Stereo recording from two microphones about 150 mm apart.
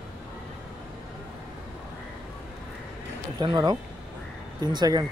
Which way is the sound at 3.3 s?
30° right (ahead or behind).